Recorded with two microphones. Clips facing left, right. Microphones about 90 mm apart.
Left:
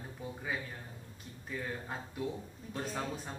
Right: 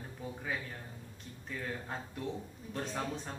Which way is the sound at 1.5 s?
5° left (ahead or behind).